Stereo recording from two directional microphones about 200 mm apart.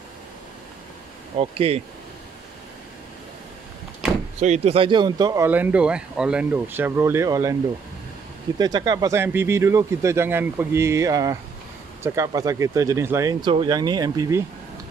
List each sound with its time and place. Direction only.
1.3 s speech: 30° right (ahead or behind)
4.4 s speech: 30° right (ahead or behind); by 7.5 s 15° right (ahead or behind)
8.5 s speech: 20° right (ahead or behind)